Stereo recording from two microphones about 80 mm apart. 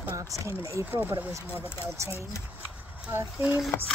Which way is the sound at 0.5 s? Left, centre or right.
Right.